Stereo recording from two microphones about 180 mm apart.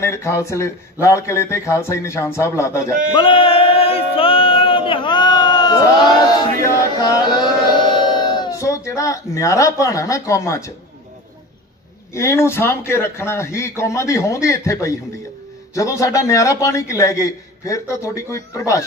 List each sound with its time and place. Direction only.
0.0 s a man's voice: 15° left (ahead or behind)
3.2 s a sound: 30° left (ahead or behind)
6.5 s chant: 20° left (ahead or behind)
12.1 s a man's voice: 15° left (ahead or behind)